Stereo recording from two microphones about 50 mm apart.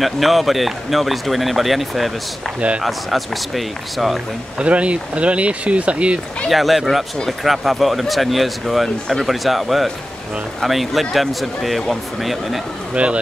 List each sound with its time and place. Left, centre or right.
0.0 s speech: centre
4.6 s speech: right
6.5 s speech: centre
12.9 s speech: right